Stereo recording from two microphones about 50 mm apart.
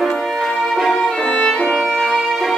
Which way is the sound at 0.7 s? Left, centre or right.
Centre.